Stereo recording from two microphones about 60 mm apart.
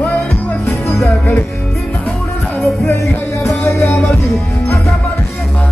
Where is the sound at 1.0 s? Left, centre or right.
Left.